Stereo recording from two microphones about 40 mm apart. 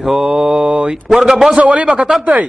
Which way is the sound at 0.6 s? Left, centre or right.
Right.